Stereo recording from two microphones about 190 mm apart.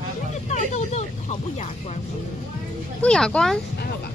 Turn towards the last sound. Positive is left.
turn(degrees=5)  # may be behind; listen again after turning